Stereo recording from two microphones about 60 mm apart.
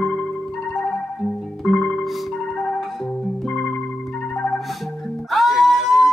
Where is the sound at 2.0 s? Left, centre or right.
Centre.